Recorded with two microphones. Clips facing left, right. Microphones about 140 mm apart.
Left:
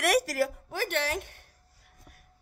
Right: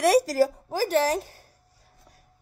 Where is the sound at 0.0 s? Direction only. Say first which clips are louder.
Right 6 dB; 30° right (ahead or behind).